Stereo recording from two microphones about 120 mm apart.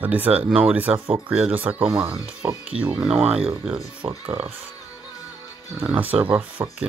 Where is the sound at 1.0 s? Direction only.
45° right (ahead or behind).